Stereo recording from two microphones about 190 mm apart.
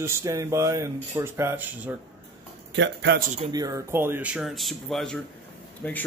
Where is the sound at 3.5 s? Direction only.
20° right (ahead or behind).